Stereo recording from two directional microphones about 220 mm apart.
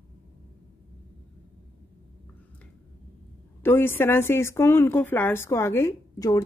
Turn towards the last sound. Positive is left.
turn(degrees=15)  # may be behind; listen again after turning